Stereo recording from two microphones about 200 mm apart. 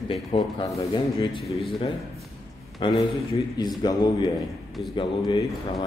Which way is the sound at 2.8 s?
25° left (ahead or behind).